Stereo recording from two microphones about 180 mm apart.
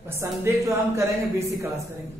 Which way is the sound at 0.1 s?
15° right (ahead or behind).